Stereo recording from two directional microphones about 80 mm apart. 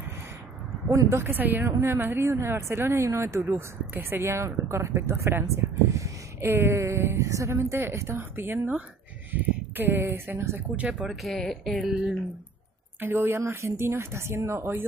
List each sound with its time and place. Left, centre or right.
0.8 s a woman's voice: right
1.3 s a woman's voice: right
2.2 s a woman's voice: right
2.5 s a woman's voice: right
5.9 s a sound: right
6.5 s a woman's voice: right
9.3 s a sound: right
10.1 s a woman's voice: right
10.9 s speech: centre
11.2 s speech: centre
13.0 s a woman's voice: right